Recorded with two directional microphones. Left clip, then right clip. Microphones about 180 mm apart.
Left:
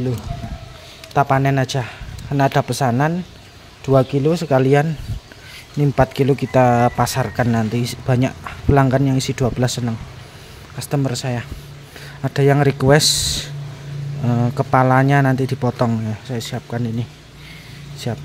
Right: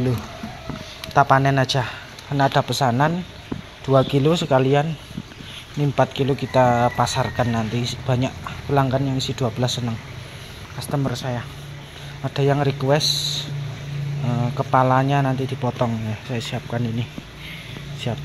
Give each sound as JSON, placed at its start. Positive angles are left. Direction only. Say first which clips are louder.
{"t": 1.1, "sound": "a man's voice", "louder": "even", "side_deg": 35}
{"t": 4.1, "sound": "speech", "louder": "left 1 dB", "side_deg": 25}
{"t": 14.2, "sound": "speech", "louder": "left 5 dB", "side_deg": 40}
{"t": 16.1, "sound": "speech", "louder": "left 1 dB", "side_deg": 30}
{"t": 18.1, "sound": "speech", "louder": "left 2 dB", "side_deg": 25}